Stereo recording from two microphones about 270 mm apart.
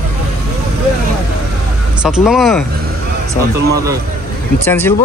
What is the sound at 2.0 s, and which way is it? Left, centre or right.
Speech, centre.